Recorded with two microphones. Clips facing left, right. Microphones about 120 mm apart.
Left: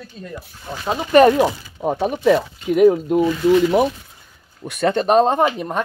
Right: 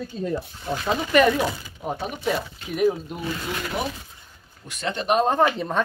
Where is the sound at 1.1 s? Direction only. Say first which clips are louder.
Left 8 dB; 40° left (ahead or behind).